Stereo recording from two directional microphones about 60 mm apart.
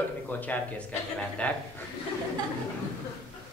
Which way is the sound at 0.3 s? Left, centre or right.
Left.